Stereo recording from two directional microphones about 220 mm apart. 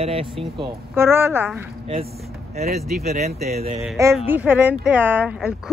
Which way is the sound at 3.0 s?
30° right (ahead or behind).